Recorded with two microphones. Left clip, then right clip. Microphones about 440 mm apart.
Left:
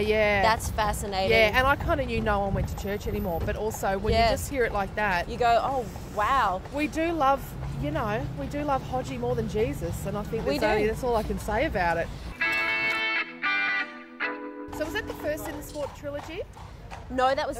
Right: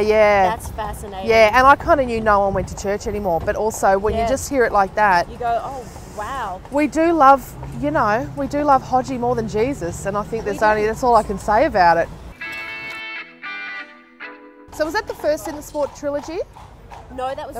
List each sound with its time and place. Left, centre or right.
0.0 s speech: right
0.5 s a woman's voice: left
1.3 s speech: right
5.4 s a woman's voice: left
6.7 s speech: right
12.4 s music: centre
14.8 s speech: right
17.2 s speech: left